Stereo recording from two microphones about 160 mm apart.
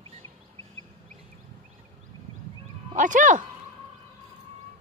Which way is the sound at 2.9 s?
55° right (ahead or behind).